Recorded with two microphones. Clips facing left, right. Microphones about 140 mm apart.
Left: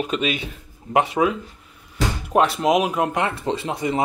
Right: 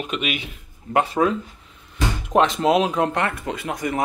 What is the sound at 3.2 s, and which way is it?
Speech, 25° left (ahead or behind).